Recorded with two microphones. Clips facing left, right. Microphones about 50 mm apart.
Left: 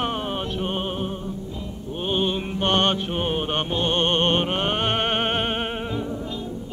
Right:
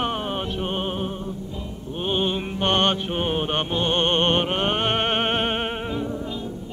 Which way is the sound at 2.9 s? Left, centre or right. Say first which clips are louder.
Even; centre.